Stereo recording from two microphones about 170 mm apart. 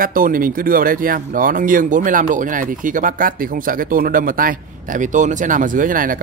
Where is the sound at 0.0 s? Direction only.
55° right (ahead or behind).